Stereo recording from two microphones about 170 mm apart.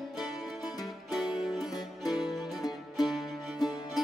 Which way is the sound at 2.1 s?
25° left (ahead or behind).